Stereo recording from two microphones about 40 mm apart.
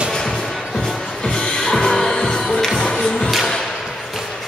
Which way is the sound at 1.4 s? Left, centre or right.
Centre.